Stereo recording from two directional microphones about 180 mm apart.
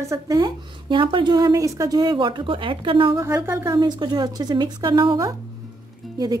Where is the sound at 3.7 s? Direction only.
25° right (ahead or behind).